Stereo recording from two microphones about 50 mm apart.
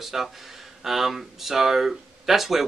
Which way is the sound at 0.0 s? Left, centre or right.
Centre.